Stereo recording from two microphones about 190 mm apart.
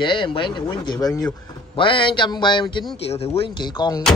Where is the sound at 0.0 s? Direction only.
25° left (ahead or behind).